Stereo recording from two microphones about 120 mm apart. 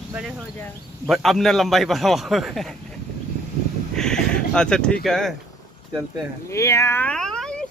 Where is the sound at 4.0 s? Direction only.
5° left (ahead or behind).